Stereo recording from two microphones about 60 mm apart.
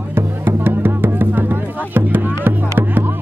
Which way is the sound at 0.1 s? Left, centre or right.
Right.